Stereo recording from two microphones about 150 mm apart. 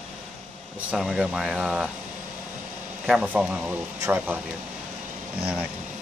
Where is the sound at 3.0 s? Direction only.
5° right (ahead or behind).